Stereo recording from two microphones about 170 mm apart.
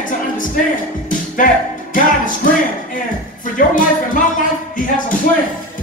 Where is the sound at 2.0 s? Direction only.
50° left (ahead or behind).